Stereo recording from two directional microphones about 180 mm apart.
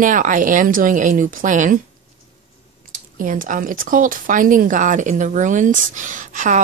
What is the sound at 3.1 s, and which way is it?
Speech, 50° right (ahead or behind).